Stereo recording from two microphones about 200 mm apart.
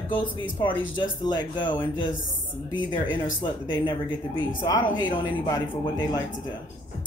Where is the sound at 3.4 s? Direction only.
20° left (ahead or behind).